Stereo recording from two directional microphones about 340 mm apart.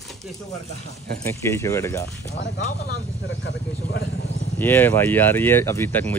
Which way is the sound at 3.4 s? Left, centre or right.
Left.